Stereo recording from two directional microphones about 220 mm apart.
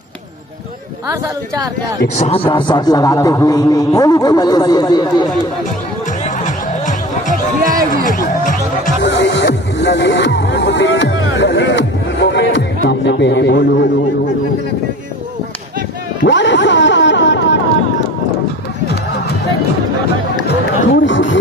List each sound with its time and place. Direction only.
2.1 s a man's voice: 25° left (ahead or behind)
6.2 s music: 35° left (ahead or behind)
8.2 s speech: 35° left (ahead or behind)
9.0 s speech: 55° left (ahead or behind)
16.3 s speech: 55° left (ahead or behind)
20.4 s run: 55° left (ahead or behind)